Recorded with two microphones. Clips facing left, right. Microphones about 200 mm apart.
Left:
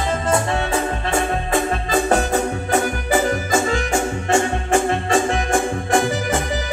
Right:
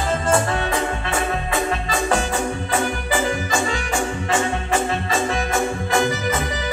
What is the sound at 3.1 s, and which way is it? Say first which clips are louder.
Music: left 5 dB; 45° left (ahead or behind).